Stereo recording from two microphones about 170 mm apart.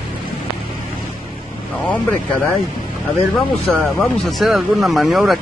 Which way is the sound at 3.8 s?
Centre (ahead or behind).